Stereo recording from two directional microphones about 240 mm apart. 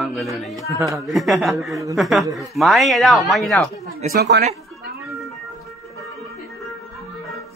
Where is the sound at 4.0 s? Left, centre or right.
Right.